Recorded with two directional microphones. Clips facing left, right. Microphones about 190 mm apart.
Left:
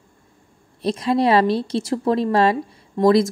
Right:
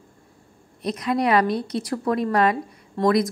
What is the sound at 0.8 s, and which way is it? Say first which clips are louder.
Speech: left 4 dB; 30° left (ahead or behind).